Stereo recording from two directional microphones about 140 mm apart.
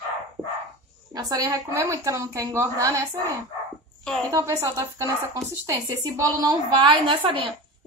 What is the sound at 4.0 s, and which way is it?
Speech, 5° left (ahead or behind).